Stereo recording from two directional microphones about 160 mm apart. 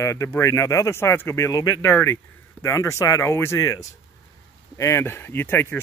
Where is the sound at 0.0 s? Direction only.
20° left (ahead or behind).